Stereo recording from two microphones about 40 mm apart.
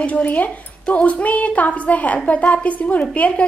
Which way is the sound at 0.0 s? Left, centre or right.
Left.